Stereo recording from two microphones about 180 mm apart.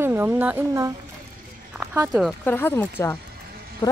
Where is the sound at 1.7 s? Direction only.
10° right (ahead or behind).